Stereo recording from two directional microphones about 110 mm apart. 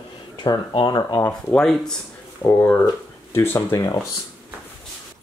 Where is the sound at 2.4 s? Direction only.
15° left (ahead or behind).